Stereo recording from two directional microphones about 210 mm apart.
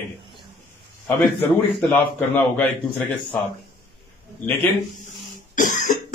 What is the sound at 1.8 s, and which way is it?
A man's voice, 10° left (ahead or behind).